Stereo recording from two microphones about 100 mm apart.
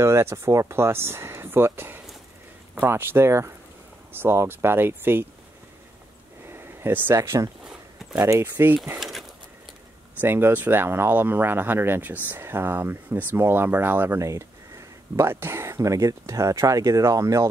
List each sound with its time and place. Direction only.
0.0 s speech: 25° right (ahead or behind)
6.4 s speech: 25° right (ahead or behind)
7.6 s a sound: 5° right (ahead or behind)
8.2 s speech: 30° right (ahead or behind)
10.2 s speech: 20° right (ahead or behind)